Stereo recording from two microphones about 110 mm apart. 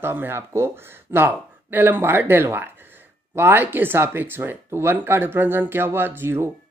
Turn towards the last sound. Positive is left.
turn(degrees=-20)  # may be behind; listen again after turning